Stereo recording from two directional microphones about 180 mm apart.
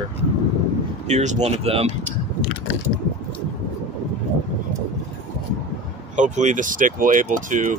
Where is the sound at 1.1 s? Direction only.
40° right (ahead or behind).